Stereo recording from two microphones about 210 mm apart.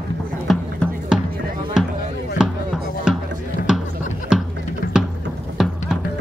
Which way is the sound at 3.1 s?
5° right (ahead or behind).